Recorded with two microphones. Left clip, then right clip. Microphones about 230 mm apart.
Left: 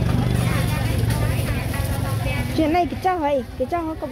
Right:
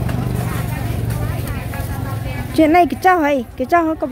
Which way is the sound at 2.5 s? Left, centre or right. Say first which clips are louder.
Right 8 dB; right.